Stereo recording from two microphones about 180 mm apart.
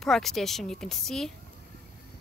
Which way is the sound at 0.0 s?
Centre (ahead or behind).